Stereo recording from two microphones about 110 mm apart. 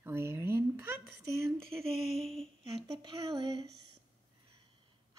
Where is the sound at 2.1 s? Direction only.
5° left (ahead or behind).